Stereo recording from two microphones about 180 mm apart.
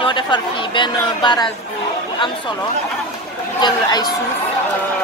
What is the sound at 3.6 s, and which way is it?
Speech, 25° left (ahead or behind).